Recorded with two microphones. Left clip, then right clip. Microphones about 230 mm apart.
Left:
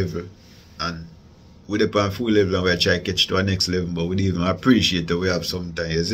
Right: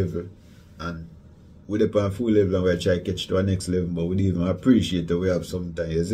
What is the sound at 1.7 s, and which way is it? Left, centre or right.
A man's voice, centre.